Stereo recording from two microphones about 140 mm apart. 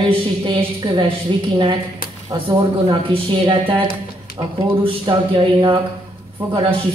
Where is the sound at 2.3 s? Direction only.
30° right (ahead or behind).